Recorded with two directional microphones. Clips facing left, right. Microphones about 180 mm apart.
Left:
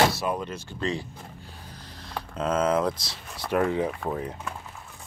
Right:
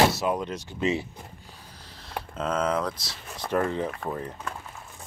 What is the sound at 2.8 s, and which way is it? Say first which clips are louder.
Speech: left 4 dB; 15° left (ahead or behind).